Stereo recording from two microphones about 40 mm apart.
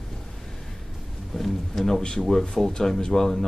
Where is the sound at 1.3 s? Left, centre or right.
Centre.